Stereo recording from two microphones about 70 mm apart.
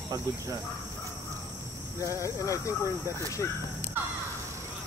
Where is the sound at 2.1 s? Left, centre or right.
Left.